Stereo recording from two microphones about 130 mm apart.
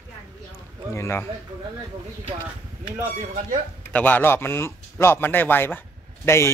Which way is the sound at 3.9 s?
10° left (ahead or behind).